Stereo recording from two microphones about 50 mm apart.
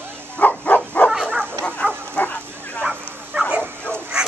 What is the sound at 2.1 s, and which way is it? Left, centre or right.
Bow-wow, left.